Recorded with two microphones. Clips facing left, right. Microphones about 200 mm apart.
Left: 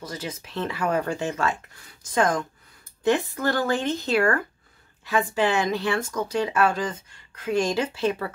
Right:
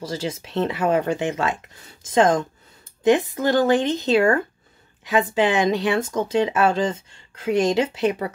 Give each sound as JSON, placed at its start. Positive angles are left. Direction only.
{"t": 0.0, "sound": "speech", "side_deg": -30}